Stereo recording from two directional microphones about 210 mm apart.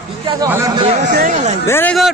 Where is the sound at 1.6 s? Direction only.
10° left (ahead or behind).